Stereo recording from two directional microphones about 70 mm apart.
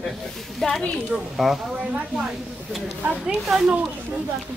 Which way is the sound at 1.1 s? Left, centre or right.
Centre.